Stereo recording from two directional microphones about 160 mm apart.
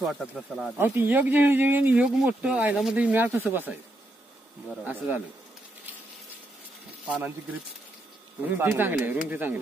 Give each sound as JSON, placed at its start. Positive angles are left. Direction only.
{"t": 0.6, "sound": "speech", "side_deg": -10}
{"t": 4.8, "sound": "speech", "side_deg": -10}
{"t": 7.1, "sound": "speech", "side_deg": -10}
{"t": 8.5, "sound": "speech", "side_deg": -15}